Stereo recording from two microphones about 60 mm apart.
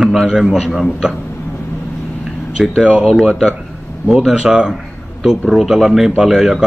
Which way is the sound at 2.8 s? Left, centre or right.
Centre.